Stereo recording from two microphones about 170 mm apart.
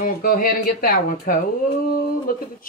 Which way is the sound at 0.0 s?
55° left (ahead or behind).